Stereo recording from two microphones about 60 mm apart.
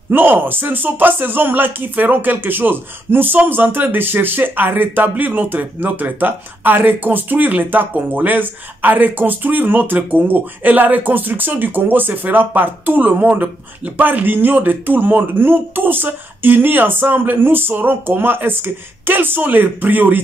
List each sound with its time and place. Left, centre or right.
0.1 s speech: right